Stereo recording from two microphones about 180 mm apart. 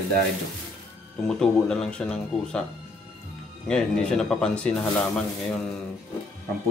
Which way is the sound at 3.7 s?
5° left (ahead or behind).